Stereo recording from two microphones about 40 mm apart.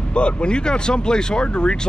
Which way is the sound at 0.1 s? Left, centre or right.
Left.